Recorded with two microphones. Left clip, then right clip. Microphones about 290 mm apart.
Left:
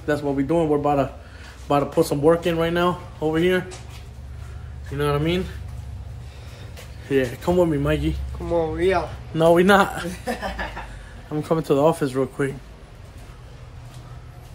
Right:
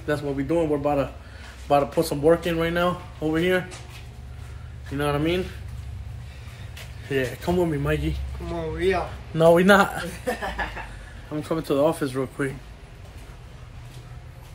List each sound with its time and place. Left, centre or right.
0.0 s speech: centre
4.9 s speech: centre
7.1 s speech: centre
9.3 s speech: centre
11.3 s speech: centre